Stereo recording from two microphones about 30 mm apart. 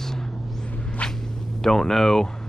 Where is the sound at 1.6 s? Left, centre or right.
Centre.